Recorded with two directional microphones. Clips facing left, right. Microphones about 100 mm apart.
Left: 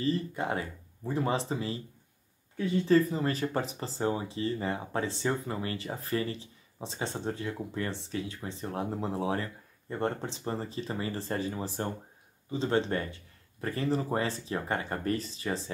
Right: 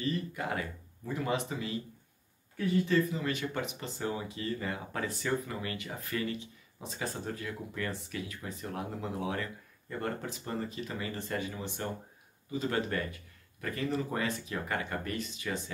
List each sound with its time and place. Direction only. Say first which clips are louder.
0.0 s speech: left 4 dB; 30° left (ahead or behind)
2.9 s speech: left 5 dB; 35° left (ahead or behind)